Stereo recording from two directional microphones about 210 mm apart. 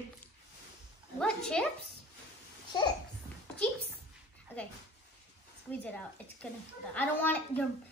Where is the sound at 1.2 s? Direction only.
5° left (ahead or behind).